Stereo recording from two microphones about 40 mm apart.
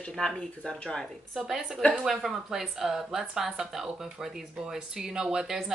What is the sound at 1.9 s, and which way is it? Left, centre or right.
Speech, centre.